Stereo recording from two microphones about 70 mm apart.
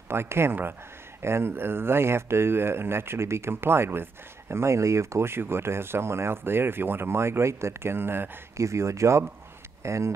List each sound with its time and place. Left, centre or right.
0.1 s speech: right
8.5 s speech: right